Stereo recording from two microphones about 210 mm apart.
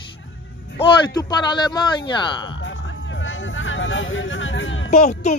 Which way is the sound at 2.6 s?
65° left (ahead or behind).